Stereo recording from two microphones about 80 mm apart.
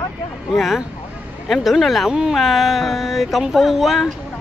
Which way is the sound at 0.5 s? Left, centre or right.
Centre.